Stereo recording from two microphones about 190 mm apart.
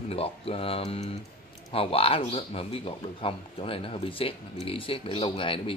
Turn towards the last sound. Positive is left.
turn(degrees=30)  # may be behind; listen again after turning